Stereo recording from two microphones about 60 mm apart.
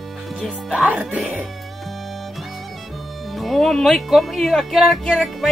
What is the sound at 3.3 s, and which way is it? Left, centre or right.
Speech, centre.